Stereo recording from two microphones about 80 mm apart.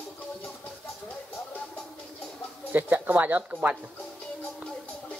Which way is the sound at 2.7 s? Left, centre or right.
Right.